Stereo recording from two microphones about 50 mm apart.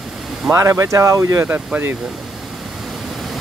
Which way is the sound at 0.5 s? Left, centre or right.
Right.